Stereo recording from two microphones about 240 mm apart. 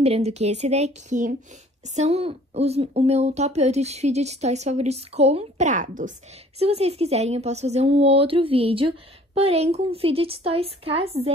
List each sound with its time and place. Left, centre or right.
0.0 s speech: right